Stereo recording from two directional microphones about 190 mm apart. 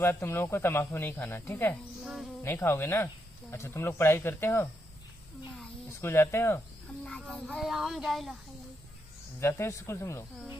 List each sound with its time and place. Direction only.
0.0 s speech: 10° left (ahead or behind)
5.9 s a child's voice: 15° left (ahead or behind)
9.4 s speech: 15° left (ahead or behind)